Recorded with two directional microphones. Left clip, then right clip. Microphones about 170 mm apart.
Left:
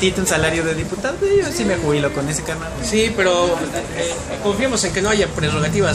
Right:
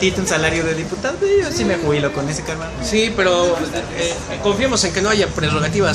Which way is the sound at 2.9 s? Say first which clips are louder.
Right 1 dB; 20° right (ahead or behind).